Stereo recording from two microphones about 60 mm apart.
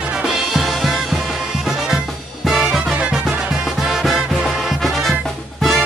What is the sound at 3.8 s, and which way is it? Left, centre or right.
Music, centre.